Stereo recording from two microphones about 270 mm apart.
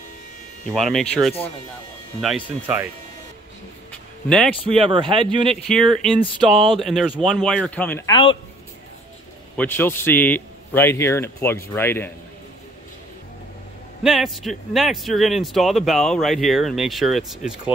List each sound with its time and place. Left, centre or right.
0.7 s speech: centre
4.7 s speech: centre
5.7 s speech: centre
9.6 s a man's voice: centre
14.0 s speech: centre